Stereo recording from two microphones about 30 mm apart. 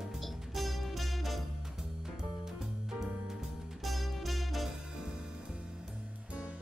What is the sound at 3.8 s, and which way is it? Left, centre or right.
Music, centre.